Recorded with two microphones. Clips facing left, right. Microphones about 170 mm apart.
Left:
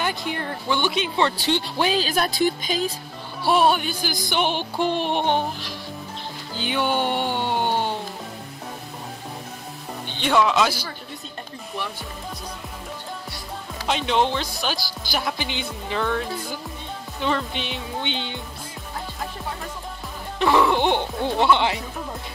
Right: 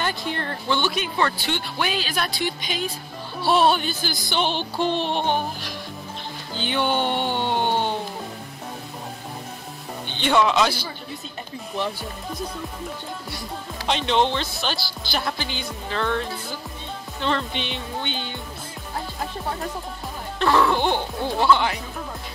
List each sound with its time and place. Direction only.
0.0 s music: 15° left (ahead or behind)
1.3 s speech: 30° left (ahead or behind)
3.4 s music: 10° left (ahead or behind)
6.5 s music: 5° left (ahead or behind)
10.0 s speech: centre (ahead or behind)
13.8 s speech: 5° left (ahead or behind)
15.0 s music: 10° left (ahead or behind)
17.2 s speech: 5° left (ahead or behind)
18.0 s speech: 20° left (ahead or behind)
20.3 s music: 15° left (ahead or behind)
21.4 s speech: 25° left (ahead or behind)